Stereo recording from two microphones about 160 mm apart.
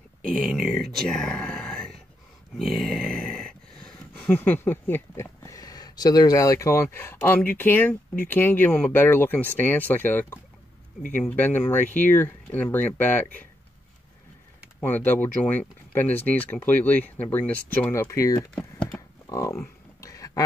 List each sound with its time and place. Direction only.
0.2 s speech: 5° left (ahead or behind)
14.8 s speech: 10° left (ahead or behind)
18.5 s typing: 5° left (ahead or behind)
19.2 s a sound: 20° left (ahead or behind)